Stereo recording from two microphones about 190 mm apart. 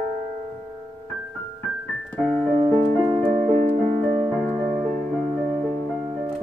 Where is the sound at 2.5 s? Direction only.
30° right (ahead or behind).